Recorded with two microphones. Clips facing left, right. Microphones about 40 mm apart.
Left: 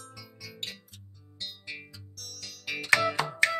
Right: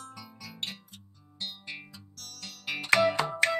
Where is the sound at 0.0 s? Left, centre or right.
Centre.